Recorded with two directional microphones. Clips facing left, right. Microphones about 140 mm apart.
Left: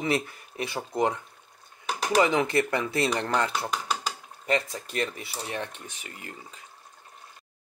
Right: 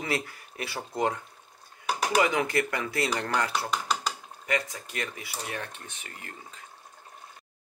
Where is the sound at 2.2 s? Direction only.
25° left (ahead or behind).